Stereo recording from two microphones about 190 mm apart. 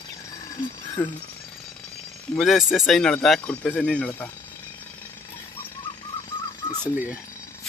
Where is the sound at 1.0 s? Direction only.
10° left (ahead or behind).